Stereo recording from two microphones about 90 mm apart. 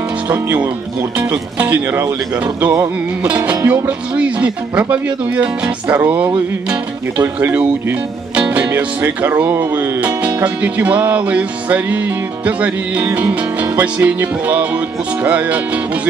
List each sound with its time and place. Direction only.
1.1 s music: 15° right (ahead or behind)
5.9 s speech: 20° right (ahead or behind)
9.9 s music: 15° right (ahead or behind)